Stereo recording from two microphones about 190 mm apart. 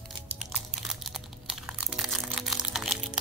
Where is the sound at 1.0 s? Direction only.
Centre (ahead or behind).